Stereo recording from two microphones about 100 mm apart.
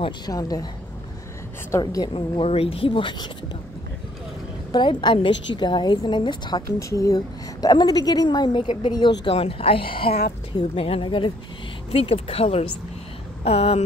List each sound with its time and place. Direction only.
0.3 s a woman's voice: 35° left (ahead or behind)
1.8 s a woman's voice: 40° left (ahead or behind)
2.1 s speech: 65° left (ahead or behind)
4.7 s a woman's voice: 50° left (ahead or behind)
6.8 s a woman's voice: 30° left (ahead or behind)
7.2 s a woman's voice: 45° left (ahead or behind)
9.3 s a woman's voice: 70° left (ahead or behind); by 11.3 s 55° left (ahead or behind)
11.9 s a woman's voice: 75° left (ahead or behind)
13.4 s a sound: 90° left